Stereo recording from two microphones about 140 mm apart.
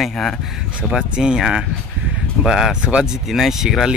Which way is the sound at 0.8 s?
5° right (ahead or behind).